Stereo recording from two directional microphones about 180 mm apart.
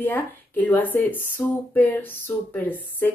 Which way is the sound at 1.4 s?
20° left (ahead or behind).